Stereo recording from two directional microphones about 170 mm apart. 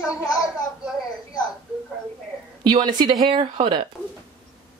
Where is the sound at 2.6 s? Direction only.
25° right (ahead or behind).